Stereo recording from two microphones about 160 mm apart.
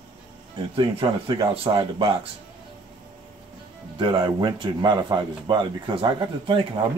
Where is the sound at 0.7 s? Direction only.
35° right (ahead or behind).